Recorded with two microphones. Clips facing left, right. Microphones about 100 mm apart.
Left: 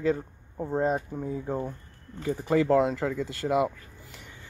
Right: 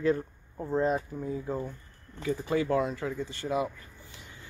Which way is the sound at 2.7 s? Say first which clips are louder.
Left 5 dB; 70° left (ahead or behind).